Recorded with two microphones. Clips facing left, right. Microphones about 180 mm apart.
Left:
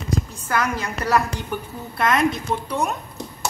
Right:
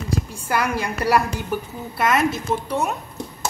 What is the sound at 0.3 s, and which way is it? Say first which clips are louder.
A woman's voice: right 1 dB; 10° right (ahead or behind).